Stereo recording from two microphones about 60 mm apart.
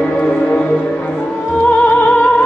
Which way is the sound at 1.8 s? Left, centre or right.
Left.